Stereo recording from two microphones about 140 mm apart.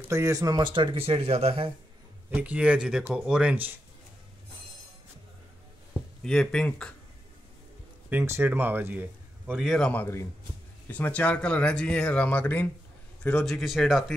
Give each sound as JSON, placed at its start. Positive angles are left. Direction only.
{"t": 0.1, "sound": "speech", "side_deg": -25}
{"t": 2.3, "sound": "a man's voice", "side_deg": -10}
{"t": 6.2, "sound": "speech", "side_deg": 5}
{"t": 8.1, "sound": "a man's voice", "side_deg": -15}
{"t": 9.6, "sound": "speech", "side_deg": 5}